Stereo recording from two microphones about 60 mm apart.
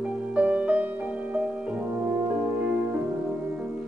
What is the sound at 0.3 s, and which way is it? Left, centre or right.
Music, right.